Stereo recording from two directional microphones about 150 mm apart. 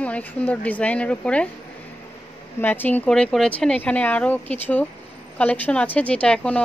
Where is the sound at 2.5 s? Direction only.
15° left (ahead or behind).